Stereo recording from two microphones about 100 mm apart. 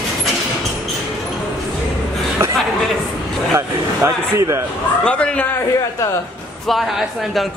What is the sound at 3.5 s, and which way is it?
Speech, 30° right (ahead or behind).